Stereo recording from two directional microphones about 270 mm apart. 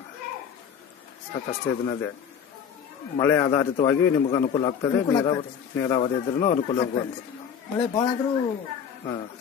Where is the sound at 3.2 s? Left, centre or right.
Centre.